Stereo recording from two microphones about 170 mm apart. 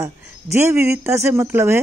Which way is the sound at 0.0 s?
15° right (ahead or behind).